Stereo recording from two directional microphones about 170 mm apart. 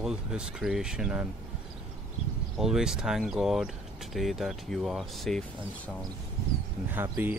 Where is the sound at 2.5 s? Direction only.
5° right (ahead or behind).